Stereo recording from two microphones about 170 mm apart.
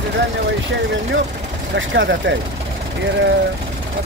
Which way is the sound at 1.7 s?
90° right.